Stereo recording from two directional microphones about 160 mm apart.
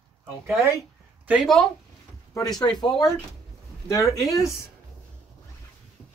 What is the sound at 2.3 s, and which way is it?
Speech, 25° left (ahead or behind).